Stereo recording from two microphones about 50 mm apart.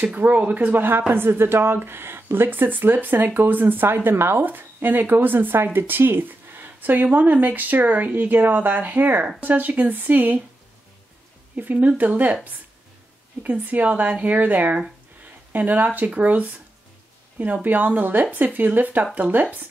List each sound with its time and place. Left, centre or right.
0.0 s a woman's voice: right
0.7 s a woman's voice: right
11.5 s a woman's voice: right
13.4 s a woman's voice: right